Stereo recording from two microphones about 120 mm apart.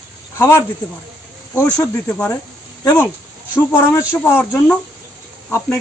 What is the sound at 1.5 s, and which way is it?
Speech, 15° left (ahead or behind).